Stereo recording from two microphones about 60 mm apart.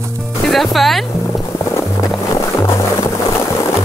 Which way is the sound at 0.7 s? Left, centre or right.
Centre.